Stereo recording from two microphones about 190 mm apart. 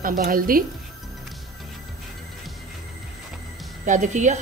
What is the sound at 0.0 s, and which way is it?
Speech, 45° right (ahead or behind).